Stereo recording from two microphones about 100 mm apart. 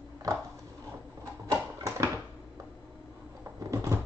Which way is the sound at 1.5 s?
35° right (ahead or behind).